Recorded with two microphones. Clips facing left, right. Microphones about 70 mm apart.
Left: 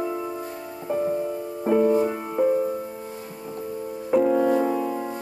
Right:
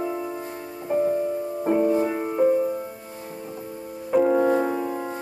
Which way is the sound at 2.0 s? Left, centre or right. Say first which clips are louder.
Even; right.